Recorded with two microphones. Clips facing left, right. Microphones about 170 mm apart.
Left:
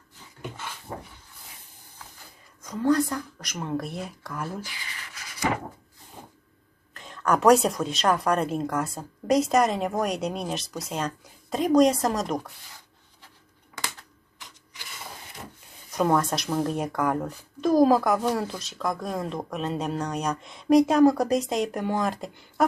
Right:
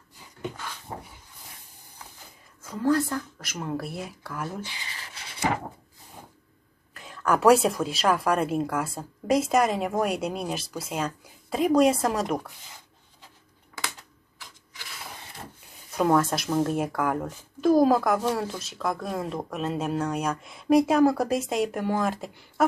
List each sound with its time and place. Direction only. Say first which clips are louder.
2.6 s speech: left 1 dB; 5° right (ahead or behind)
4.6 s rub: right 1 dB; 30° right (ahead or behind)
6.9 s speech: even; 5° right (ahead or behind)
15.9 s speech: right 1 dB; 5° right (ahead or behind)